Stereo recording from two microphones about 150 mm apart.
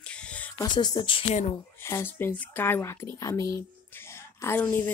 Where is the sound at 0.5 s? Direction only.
25° left (ahead or behind).